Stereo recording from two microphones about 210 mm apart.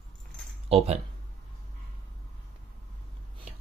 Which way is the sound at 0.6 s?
30° right (ahead or behind).